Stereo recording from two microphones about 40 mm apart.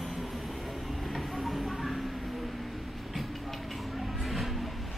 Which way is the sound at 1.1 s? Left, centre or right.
Centre.